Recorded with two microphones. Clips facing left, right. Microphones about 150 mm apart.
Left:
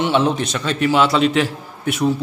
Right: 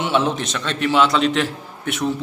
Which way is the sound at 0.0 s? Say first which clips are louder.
Left 3 dB; centre (ahead or behind).